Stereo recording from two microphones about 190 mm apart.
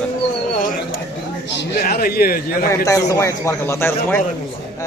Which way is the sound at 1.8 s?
50° left (ahead or behind).